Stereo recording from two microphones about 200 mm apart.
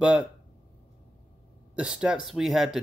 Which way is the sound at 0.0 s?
5° right (ahead or behind).